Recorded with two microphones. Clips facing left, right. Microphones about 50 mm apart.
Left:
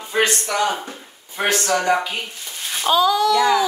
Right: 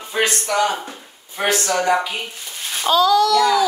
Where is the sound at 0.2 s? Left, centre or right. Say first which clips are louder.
Even; centre.